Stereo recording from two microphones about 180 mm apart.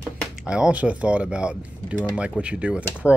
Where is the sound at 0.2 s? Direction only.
5° right (ahead or behind).